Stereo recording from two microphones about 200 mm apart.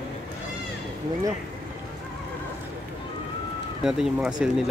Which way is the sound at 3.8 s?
Centre (ahead or behind).